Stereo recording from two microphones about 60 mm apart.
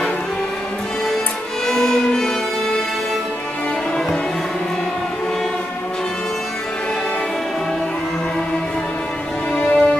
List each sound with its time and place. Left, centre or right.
1.7 s violin: centre
9.6 s music: left